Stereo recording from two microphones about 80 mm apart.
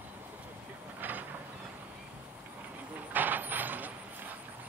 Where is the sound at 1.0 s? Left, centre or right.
Right.